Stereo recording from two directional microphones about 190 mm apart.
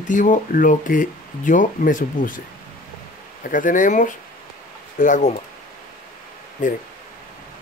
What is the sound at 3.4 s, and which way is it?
Speech, 45° left (ahead or behind).